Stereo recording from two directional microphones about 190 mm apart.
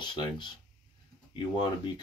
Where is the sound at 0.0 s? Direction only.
25° left (ahead or behind).